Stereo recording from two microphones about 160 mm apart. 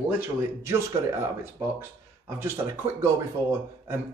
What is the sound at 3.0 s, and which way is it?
Speech, 15° right (ahead or behind).